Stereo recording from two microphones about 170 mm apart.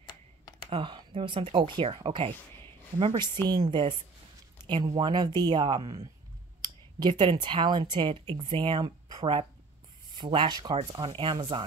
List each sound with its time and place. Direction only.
0.7 s speech: 30° right (ahead or behind)